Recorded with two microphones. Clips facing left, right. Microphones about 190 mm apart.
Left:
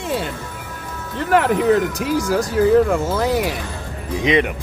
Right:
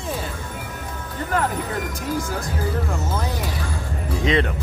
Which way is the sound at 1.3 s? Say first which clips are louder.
Left 10 dB; 90° left.